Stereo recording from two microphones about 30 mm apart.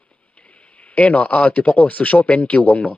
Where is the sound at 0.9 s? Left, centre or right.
Left.